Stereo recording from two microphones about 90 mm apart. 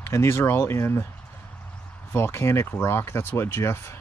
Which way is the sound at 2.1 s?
30° left (ahead or behind).